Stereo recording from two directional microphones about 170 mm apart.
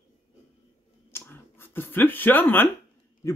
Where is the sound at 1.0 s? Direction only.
15° left (ahead or behind).